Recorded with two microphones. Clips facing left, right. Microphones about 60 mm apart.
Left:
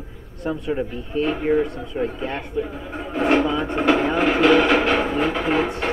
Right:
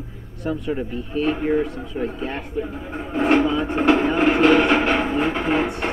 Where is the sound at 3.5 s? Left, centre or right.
Centre.